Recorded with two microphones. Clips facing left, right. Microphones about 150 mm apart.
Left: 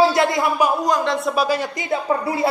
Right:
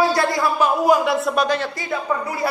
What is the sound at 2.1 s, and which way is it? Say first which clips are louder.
Speech: left 3 dB; 30° left (ahead or behind).